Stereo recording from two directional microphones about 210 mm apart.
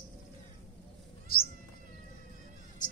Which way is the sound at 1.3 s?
45° left (ahead or behind).